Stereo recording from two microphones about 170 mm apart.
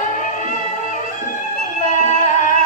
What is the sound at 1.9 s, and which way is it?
Music, 50° left (ahead or behind).